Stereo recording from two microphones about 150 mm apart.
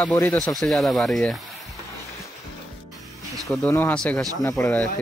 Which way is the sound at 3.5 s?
15° left (ahead or behind).